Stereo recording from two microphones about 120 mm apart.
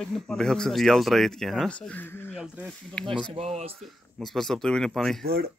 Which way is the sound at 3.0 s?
5° left (ahead or behind).